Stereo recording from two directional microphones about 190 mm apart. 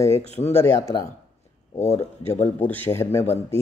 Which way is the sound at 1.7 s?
35° left (ahead or behind).